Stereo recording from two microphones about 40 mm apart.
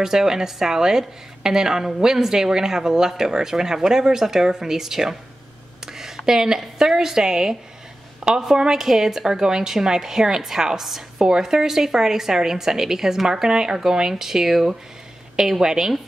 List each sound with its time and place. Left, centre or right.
0.0 s a woman's voice: centre